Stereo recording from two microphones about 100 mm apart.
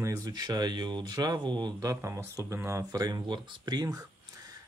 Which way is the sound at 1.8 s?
30° right (ahead or behind).